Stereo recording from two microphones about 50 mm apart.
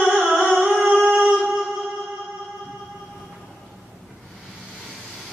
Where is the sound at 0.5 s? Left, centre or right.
Right.